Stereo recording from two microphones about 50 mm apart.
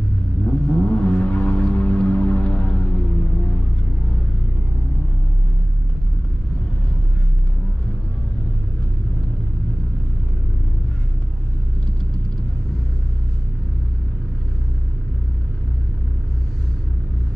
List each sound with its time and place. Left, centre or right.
0.5 s music: left